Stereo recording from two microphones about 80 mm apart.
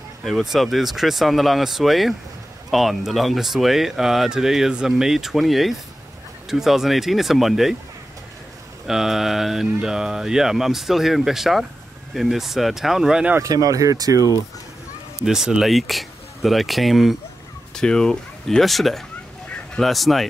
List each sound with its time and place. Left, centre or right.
0.4 s speech: centre
8.8 s speech: centre
13.4 s speech: right
15.2 s speech: centre
17.7 s speech: centre